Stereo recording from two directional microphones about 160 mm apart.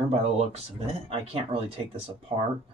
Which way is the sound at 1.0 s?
35° right (ahead or behind).